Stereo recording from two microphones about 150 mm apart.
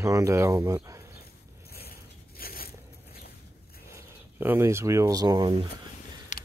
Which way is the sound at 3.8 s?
15° right (ahead or behind).